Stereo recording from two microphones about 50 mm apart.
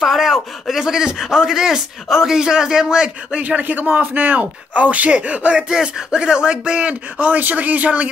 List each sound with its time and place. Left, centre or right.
0.0 s speech: centre; by 8.1 s right